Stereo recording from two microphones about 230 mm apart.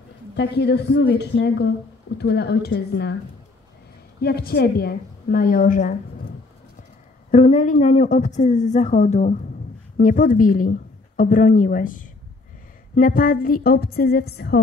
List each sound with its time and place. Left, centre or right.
0.4 s a woman's voice: left
4.2 s a woman's voice: left
7.2 s a woman's voice: left